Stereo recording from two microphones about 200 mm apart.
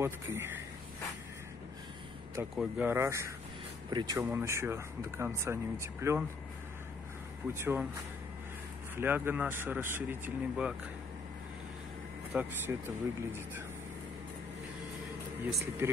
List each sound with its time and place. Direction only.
0.0 s speech: 10° right (ahead or behind)
2.5 s speech: centre (ahead or behind)
2.9 s speech: 15° right (ahead or behind)
7.5 s speech: 10° right (ahead or behind)
8.9 s speech: 10° right (ahead or behind)
12.3 s speech: 10° right (ahead or behind)
15.4 s speech: 10° right (ahead or behind)